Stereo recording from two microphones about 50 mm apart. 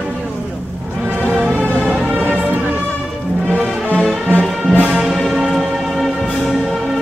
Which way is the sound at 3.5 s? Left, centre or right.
Right.